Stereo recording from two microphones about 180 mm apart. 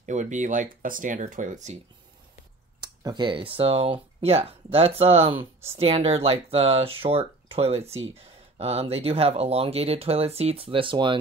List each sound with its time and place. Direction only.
0.0 s speech: 45° right (ahead or behind)
2.8 s speech: 25° right (ahead or behind)
5.4 s speech: 15° right (ahead or behind)
5.8 s speech: 35° right (ahead or behind)